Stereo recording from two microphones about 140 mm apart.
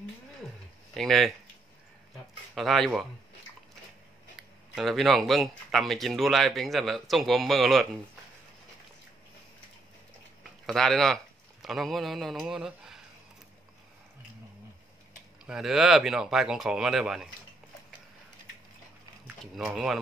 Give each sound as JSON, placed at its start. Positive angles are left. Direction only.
{"t": 0.9, "sound": "speech", "side_deg": 0}
{"t": 2.5, "sound": "speech", "side_deg": 0}
{"t": 4.4, "sound": "speech", "side_deg": 0}
{"t": 10.7, "sound": "speech", "side_deg": 0}
{"t": 15.4, "sound": "speech", "side_deg": -5}
{"t": 19.6, "sound": "speech", "side_deg": -5}